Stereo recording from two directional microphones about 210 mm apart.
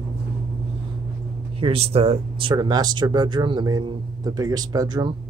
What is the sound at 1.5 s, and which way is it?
Speech, 25° right (ahead or behind).